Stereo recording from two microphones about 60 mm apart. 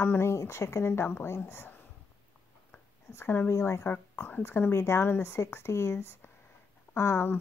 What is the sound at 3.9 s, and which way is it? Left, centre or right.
Speech, left.